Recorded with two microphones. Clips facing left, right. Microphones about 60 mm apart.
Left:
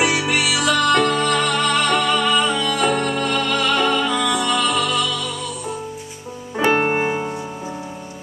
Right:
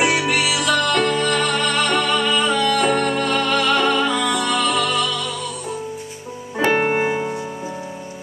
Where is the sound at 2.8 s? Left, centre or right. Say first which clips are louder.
Right 1 dB; centre.